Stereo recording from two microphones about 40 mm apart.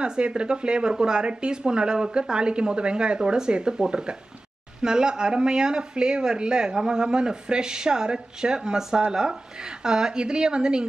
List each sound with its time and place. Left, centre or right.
0.0 s speech: right